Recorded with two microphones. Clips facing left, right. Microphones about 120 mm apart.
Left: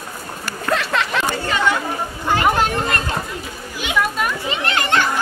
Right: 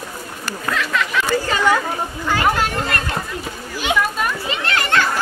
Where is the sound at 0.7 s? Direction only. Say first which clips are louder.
Left 2 dB; 30° left (ahead or behind).